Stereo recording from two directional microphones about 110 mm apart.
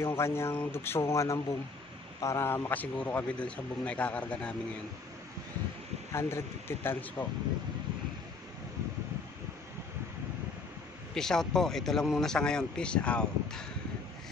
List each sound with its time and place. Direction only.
0.0 s a man's voice: 25° left (ahead or behind)
6.1 s speech: 20° left (ahead or behind)
11.1 s a man's voice: 5° left (ahead or behind)